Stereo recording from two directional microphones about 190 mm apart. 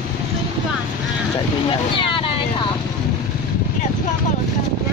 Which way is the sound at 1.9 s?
25° left (ahead or behind).